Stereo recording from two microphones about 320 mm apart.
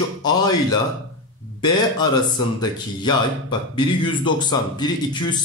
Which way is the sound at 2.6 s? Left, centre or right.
Centre.